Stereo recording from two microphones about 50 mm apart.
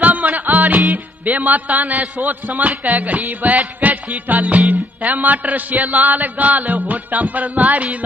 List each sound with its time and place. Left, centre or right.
0.0 s music: right